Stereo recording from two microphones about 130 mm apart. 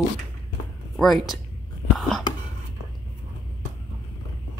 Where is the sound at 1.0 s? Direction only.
Centre (ahead or behind).